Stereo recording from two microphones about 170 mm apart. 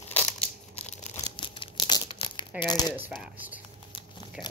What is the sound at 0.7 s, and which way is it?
Crumpling, 40° left (ahead or behind).